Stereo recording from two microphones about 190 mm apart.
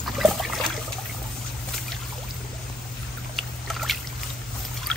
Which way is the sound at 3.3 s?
Centre (ahead or behind).